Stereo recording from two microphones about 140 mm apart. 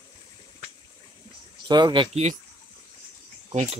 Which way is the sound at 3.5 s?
50° right (ahead or behind).